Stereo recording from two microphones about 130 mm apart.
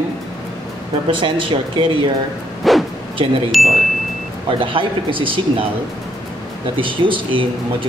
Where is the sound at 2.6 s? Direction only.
Centre (ahead or behind).